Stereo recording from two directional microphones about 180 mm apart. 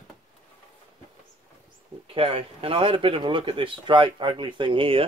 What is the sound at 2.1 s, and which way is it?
Speech, 30° right (ahead or behind).